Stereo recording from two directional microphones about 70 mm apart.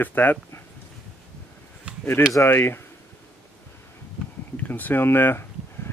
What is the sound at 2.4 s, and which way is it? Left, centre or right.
Speech, left.